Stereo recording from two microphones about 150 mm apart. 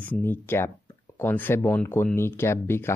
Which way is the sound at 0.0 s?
10° left (ahead or behind).